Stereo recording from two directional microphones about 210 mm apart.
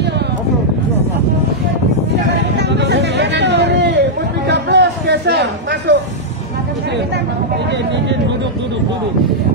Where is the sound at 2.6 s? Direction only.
55° right (ahead or behind).